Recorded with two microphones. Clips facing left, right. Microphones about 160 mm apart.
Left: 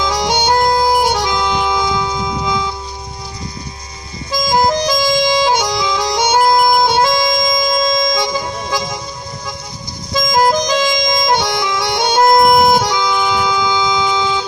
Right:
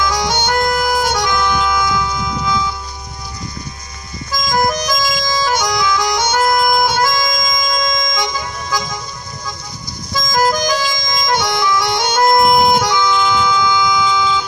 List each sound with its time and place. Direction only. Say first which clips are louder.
0.0 s music: left 1 dB; 25° left (ahead or behind)
4.3 s music: left 3 dB; 25° left (ahead or behind)
10.1 s music: left 3 dB; 25° left (ahead or behind)
13.7 s a sound: even; 25° left (ahead or behind)